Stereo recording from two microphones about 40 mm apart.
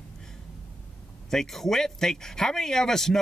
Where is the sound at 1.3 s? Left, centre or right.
Centre.